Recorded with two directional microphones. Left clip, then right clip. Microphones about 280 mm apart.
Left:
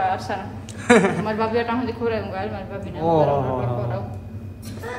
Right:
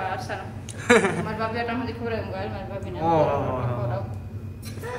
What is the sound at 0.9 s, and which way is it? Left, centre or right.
Speech, centre.